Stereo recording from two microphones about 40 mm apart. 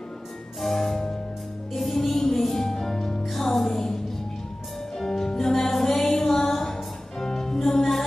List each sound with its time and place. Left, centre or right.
0.6 s music: centre
3.3 s music: centre